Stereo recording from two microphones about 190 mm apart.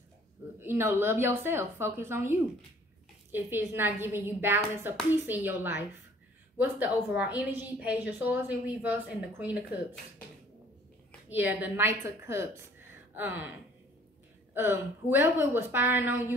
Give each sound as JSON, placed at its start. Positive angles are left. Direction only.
{"t": 0.6, "sound": "a woman's voice", "side_deg": -10}
{"t": 11.2, "sound": "a woman's voice", "side_deg": 75}
{"t": 11.6, "sound": "a woman's voice", "side_deg": -15}
{"t": 14.5, "sound": "a woman's voice", "side_deg": -10}